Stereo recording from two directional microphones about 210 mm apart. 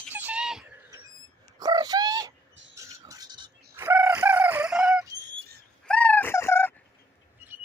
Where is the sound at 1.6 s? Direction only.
20° right (ahead or behind).